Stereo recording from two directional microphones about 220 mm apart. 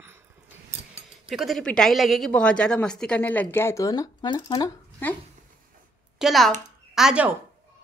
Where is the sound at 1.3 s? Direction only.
Centre (ahead or behind); by 5.1 s 15° left (ahead or behind).